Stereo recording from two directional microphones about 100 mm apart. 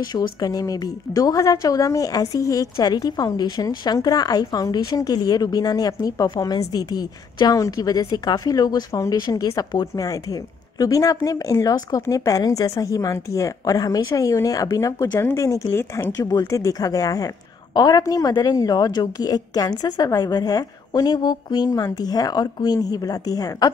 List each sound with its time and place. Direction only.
0.0 s speech: 45° left (ahead or behind); by 16.2 s 25° left (ahead or behind)
16.2 s speech: 35° left (ahead or behind)